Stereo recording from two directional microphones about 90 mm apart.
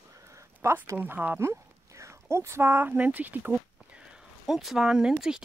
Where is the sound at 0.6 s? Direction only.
30° right (ahead or behind).